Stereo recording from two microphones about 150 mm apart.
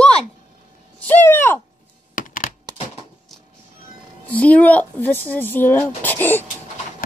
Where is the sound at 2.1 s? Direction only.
65° left (ahead or behind).